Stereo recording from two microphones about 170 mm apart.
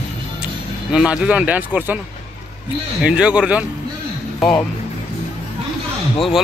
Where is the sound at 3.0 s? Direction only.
5° right (ahead or behind).